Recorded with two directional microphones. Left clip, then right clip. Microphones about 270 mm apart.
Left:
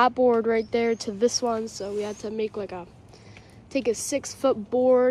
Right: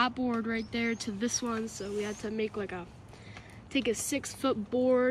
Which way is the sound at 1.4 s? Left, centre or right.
Centre.